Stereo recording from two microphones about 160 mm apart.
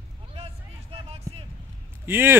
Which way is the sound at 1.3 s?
20° right (ahead or behind).